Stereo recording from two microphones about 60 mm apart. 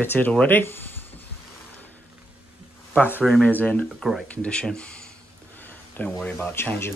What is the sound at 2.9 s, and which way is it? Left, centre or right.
Speech, left.